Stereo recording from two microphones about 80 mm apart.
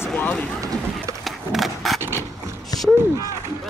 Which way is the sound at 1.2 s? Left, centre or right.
Centre.